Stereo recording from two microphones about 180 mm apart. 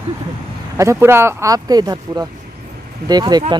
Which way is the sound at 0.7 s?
15° right (ahead or behind).